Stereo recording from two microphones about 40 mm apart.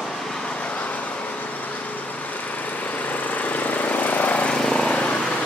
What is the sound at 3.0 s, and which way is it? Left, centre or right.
Lawn mower, left.